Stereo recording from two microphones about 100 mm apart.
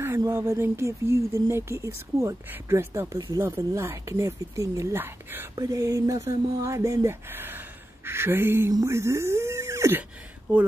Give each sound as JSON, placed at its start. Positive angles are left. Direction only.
{"t": 0.2, "sound": "speech", "side_deg": -30}
{"t": 5.6, "sound": "speech", "side_deg": -30}
{"t": 10.5, "sound": "speech", "side_deg": -15}